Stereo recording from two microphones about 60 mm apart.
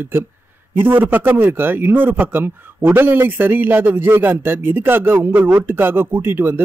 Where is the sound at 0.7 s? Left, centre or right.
Right.